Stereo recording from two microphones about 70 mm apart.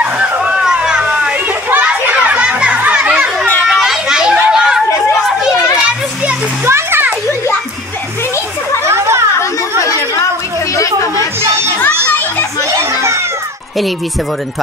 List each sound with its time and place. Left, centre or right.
0.0 s a sound: centre
1.0 s children playing: right
3.6 s children playing: centre
6.6 s a sound: right
8.8 s chatter: right
10.7 s chatter: left